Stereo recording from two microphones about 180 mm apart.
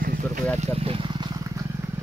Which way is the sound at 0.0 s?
50° right (ahead or behind).